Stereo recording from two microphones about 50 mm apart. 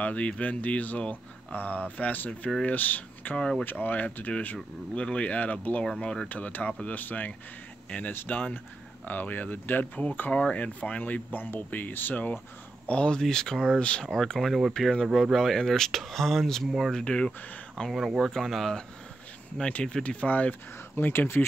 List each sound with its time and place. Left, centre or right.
0.0 s speech: left
3.3 s speech: centre
3.6 s speech: left
4.9 s speech: left
5.9 s speech: centre
6.2 s speech: left
10.3 s speech: left
12.8 s speech: left
13.1 s speech: centre
14.1 s speech: centre
17.9 s speech: centre
19.7 s speech: left
20.9 s speech: left